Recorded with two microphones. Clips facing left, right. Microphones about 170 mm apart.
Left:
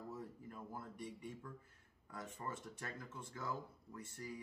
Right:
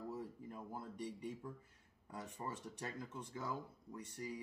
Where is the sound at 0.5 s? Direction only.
15° right (ahead or behind).